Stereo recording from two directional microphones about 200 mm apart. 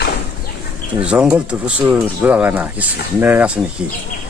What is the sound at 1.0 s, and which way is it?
Speech, 5° right (ahead or behind).